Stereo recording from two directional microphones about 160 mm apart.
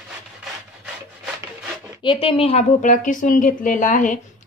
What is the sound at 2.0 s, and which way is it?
Speech, 35° left (ahead or behind).